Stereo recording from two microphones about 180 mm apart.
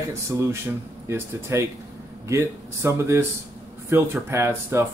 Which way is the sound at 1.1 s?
15° right (ahead or behind).